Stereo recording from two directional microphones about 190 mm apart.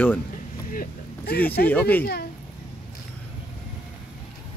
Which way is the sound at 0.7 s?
50° left (ahead or behind).